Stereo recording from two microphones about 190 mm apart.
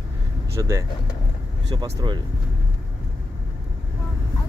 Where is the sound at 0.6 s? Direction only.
15° right (ahead or behind).